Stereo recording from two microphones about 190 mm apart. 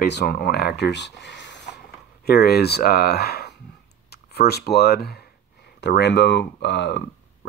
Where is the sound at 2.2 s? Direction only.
55° left (ahead or behind).